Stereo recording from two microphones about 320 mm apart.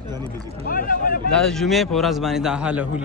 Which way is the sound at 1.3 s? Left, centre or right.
Centre.